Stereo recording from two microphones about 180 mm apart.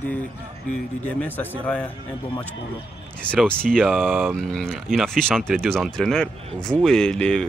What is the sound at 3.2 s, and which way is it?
Speech, 5° left (ahead or behind).